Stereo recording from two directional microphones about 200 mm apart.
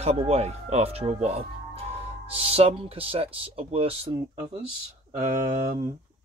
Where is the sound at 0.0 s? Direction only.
30° right (ahead or behind).